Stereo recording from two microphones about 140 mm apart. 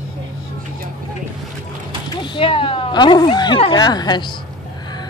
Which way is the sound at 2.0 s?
35° left (ahead or behind).